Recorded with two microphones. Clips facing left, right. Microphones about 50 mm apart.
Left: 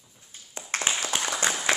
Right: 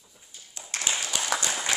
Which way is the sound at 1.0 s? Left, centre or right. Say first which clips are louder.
Left 3 dB; left.